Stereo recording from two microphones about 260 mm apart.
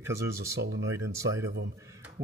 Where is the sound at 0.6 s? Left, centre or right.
Right.